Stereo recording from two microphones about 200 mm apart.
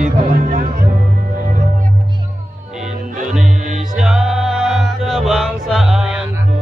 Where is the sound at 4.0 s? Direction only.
Centre (ahead or behind).